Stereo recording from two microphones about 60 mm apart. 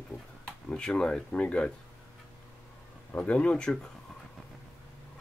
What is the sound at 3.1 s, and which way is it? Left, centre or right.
Speech, left.